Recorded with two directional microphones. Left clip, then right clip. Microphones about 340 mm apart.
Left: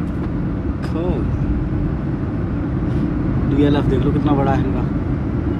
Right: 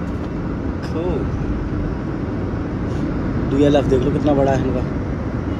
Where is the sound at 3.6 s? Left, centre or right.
Centre.